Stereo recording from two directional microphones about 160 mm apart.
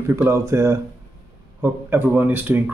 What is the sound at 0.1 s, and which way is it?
Speech, 15° right (ahead or behind).